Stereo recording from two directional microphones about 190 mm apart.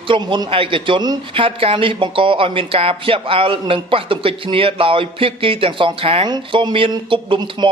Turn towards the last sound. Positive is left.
turn(degrees=-25)  # may be behind; listen again after turning